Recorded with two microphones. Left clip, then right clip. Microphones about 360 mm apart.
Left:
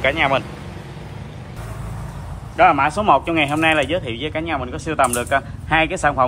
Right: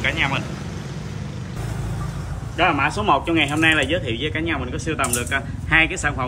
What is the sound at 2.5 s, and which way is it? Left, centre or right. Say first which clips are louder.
A man's voice: left 5 dB; centre.